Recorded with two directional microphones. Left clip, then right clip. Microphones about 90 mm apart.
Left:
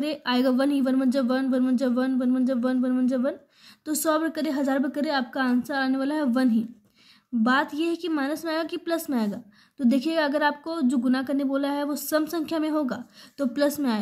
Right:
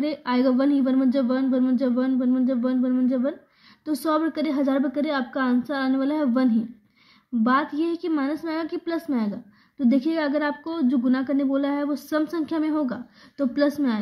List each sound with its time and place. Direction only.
0.0 s a woman's voice: 25° left (ahead or behind)